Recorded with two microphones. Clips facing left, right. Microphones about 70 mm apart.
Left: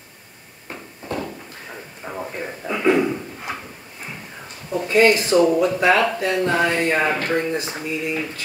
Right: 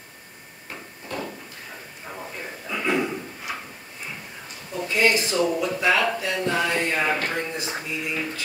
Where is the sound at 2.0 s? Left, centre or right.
Left.